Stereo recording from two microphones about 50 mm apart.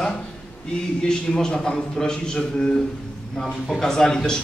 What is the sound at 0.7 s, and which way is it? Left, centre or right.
A man's voice, centre.